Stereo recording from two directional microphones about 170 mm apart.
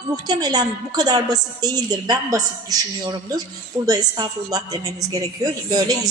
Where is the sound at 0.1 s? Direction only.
20° right (ahead or behind).